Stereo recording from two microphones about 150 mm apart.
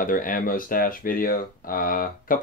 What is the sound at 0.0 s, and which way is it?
Speech, 65° left (ahead or behind).